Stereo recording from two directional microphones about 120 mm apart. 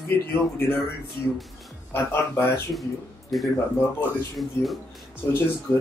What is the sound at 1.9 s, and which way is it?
Speech, 20° left (ahead or behind).